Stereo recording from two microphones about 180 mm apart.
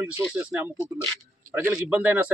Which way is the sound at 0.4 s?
10° right (ahead or behind).